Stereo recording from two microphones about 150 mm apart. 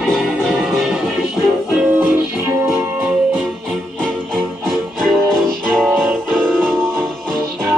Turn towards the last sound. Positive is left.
turn(degrees=5)  # may be behind; listen again after turning